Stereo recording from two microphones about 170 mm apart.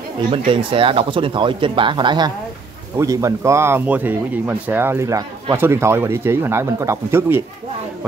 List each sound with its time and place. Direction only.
0.5 s speech: 30° right (ahead or behind); by 7.4 s 15° right (ahead or behind)